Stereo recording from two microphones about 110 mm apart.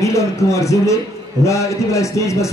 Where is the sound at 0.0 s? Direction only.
30° left (ahead or behind).